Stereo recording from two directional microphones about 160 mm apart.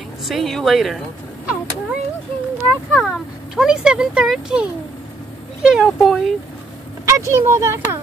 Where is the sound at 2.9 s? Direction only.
Centre (ahead or behind).